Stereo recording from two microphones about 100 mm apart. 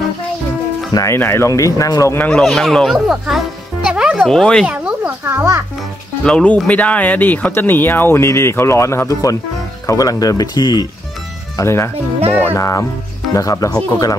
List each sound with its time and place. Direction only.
0.9 s speech: 25° left (ahead or behind)
2.1 s speech: 15° left (ahead or behind)
2.4 s speech: 5° left (ahead or behind)
4.6 s a sound: 10° right (ahead or behind)
5.2 s a child's voice: 25° right (ahead or behind)
6.2 s speech: 10° left (ahead or behind); by 10.9 s 40° left (ahead or behind)
11.5 s speech: 30° left (ahead or behind)